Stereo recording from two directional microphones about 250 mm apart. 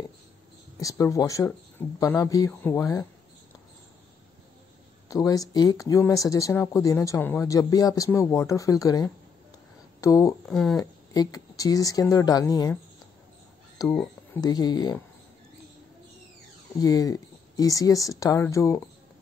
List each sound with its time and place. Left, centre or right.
0.7 s speech: centre
5.0 s speech: centre
10.5 s speech: centre
10.8 s speech: centre
13.7 s speech: centre
16.8 s speech: centre